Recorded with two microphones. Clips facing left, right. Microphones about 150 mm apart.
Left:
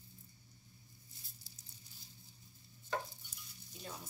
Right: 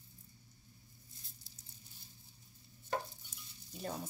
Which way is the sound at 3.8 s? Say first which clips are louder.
Right 7 dB; 55° right (ahead or behind).